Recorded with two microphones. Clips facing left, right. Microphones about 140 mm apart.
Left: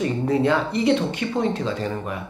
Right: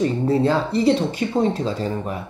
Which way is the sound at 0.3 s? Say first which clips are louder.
Even; 30° right (ahead or behind).